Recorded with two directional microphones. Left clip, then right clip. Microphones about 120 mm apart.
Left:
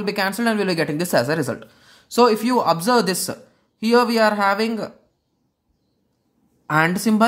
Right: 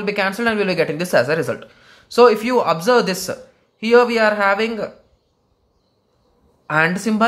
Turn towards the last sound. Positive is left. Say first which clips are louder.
# right 1 dB
turn(degrees=45)  # may be behind; listen again after turning